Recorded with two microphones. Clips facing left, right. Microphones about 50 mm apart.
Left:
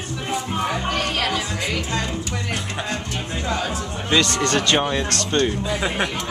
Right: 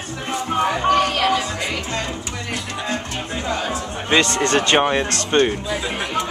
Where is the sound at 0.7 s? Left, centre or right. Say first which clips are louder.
Right 6 dB; centre.